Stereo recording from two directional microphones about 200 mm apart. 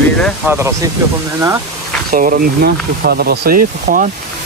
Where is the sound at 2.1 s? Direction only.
45° right (ahead or behind).